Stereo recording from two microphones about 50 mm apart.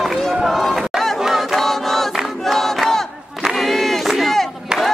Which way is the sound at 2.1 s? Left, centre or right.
Centre.